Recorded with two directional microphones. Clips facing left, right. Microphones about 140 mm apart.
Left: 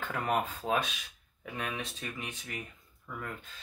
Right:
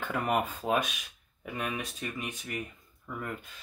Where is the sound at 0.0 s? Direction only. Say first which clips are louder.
Right 2 dB; 10° right (ahead or behind).